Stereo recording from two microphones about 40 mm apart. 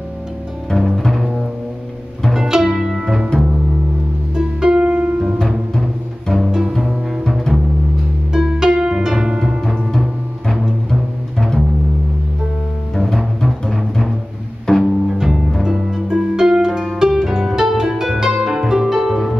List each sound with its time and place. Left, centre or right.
0.7 s music: centre
2.3 s music: centre
2.9 s music: centre
4.4 s music: right
7.2 s music: centre
8.3 s harp: centre
10.9 s music: centre
13.1 s music: centre
15.6 s harp: centre
17.0 s music: centre
17.6 s harp: centre